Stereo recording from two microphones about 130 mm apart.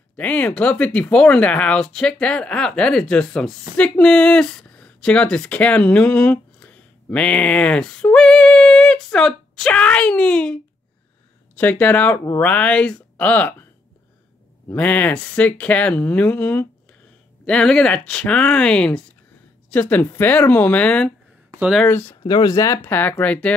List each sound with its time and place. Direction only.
0.1 s speech: 10° left (ahead or behind)
14.7 s speech: 15° left (ahead or behind)
22.2 s speech: 35° left (ahead or behind); by 23.5 s 10° left (ahead or behind)